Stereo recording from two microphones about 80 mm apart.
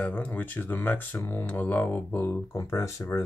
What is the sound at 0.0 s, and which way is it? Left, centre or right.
Speech, left.